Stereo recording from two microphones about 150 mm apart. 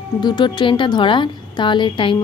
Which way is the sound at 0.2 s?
30° left (ahead or behind).